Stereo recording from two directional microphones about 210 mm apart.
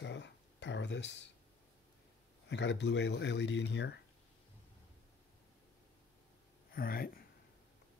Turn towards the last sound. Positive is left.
turn(degrees=45)  # may be behind; listen again after turning